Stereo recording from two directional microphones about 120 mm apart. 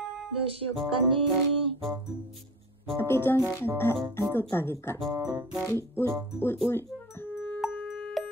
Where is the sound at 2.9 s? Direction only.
20° left (ahead or behind).